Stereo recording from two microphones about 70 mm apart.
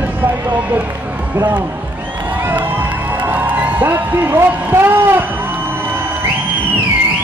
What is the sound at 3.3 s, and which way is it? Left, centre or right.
Music, right.